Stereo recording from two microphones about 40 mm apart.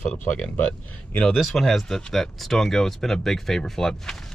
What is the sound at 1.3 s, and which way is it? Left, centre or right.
Speech, centre.